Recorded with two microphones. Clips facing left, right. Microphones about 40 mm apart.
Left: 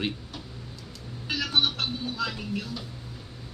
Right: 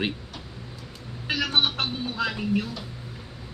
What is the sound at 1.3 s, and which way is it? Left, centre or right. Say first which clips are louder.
Speech: right 2 dB; right.